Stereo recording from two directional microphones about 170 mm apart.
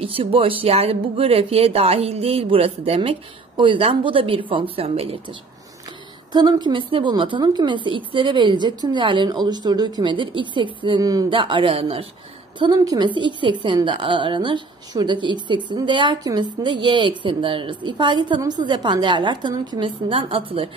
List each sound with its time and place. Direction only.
0.0 s speech: 35° right (ahead or behind)
6.3 s a woman's voice: 25° right (ahead or behind)